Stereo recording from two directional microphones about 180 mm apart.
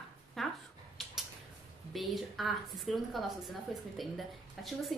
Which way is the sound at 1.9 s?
Centre (ahead or behind).